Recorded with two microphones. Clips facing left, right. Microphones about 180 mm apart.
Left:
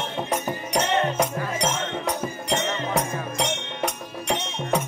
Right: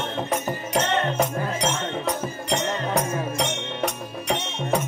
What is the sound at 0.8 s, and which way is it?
Music, 10° left (ahead or behind).